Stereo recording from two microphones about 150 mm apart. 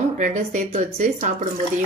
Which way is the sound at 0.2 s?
55° right (ahead or behind).